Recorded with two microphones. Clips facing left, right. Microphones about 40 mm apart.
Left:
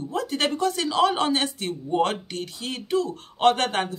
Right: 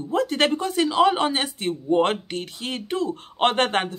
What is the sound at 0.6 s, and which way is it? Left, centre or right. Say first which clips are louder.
Speech: even; centre.